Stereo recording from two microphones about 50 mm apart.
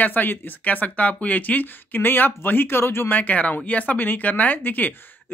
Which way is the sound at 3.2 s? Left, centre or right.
Left.